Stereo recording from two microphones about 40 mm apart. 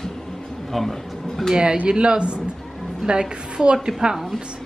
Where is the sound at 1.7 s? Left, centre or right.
Right.